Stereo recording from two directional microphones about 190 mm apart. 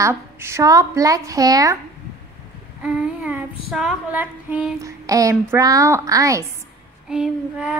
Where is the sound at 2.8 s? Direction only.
5° right (ahead or behind).